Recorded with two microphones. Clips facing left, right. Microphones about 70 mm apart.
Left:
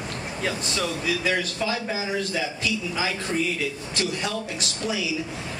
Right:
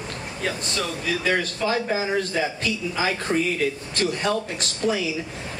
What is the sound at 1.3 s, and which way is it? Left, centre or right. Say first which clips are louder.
Speech: right 6 dB; right.